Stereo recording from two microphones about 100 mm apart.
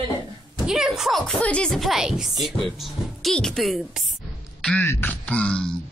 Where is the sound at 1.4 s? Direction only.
10° left (ahead or behind).